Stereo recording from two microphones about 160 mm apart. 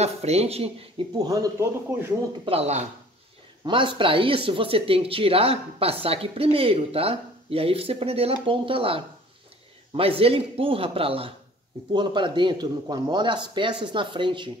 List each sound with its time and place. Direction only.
0.0 s speech: 40° right (ahead or behind)
1.1 s speech: 25° right (ahead or behind)
2.4 s speech: 40° right (ahead or behind)
3.6 s speech: 30° right (ahead or behind)